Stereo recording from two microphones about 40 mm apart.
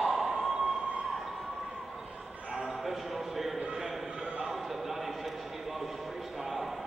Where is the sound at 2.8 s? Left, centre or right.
Centre.